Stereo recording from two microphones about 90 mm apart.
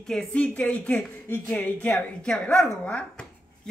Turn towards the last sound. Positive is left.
turn(degrees=10)  # may be behind; listen again after turning